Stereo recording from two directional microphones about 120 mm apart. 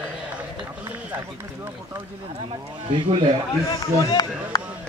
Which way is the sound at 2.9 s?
45° right (ahead or behind).